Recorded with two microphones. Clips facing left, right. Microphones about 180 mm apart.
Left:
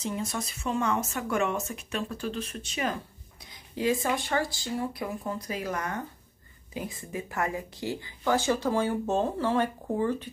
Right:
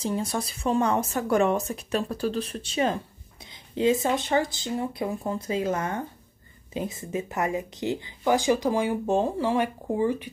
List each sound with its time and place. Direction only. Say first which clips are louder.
0.0 s speech: right 4 dB; 35° right (ahead or behind); by 10.3 s 10° right (ahead or behind)